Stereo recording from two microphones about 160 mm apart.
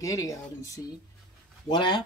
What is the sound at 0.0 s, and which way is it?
Speech, 20° left (ahead or behind).